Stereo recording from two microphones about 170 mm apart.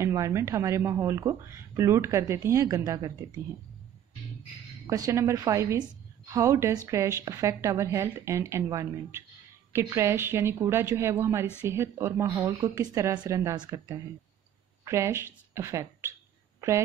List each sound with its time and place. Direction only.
0.0 s speech: 15° right (ahead or behind)
4.8 s a woman's voice: 20° right (ahead or behind)